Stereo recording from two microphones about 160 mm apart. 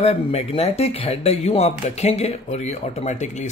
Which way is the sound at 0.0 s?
40° left (ahead or behind).